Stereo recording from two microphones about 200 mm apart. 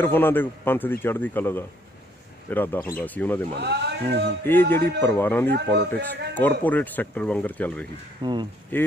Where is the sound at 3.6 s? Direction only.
55° right (ahead or behind).